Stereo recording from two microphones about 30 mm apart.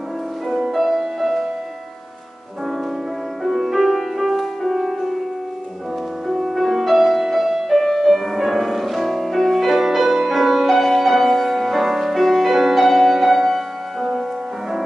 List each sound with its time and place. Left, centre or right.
0.7 s music: centre
3.4 s music: centre
6.3 s music: centre
7.8 s music: centre